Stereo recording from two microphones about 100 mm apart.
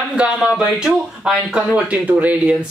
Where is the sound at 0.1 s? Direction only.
10° right (ahead or behind).